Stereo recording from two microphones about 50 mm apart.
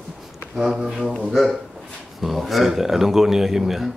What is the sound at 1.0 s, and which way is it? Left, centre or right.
Speech, centre.